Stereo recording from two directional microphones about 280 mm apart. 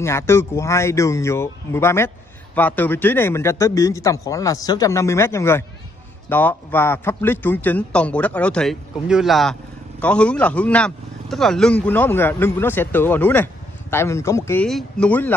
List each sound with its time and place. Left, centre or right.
0.0 s a man's voice: centre